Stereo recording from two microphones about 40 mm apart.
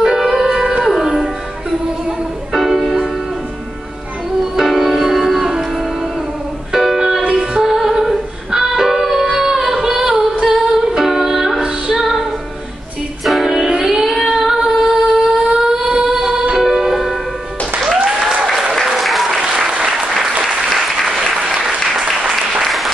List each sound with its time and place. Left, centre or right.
0.0 s music: centre
2.0 s music: centre
4.6 s music: centre
9.4 s female singing: centre
10.4 s music: centre
13.2 s music: centre
13.7 s singing: centre
15.4 s a sound: centre
16.2 s music: centre
18.9 s applause: centre
19.6 s applause: right
20.0 s applause: centre